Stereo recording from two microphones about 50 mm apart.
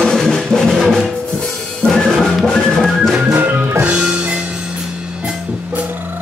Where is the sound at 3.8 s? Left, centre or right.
Right.